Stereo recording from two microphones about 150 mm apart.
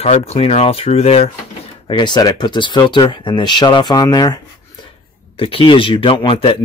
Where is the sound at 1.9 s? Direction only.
30° left (ahead or behind).